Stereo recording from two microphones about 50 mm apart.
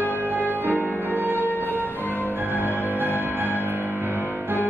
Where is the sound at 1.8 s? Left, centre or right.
Left.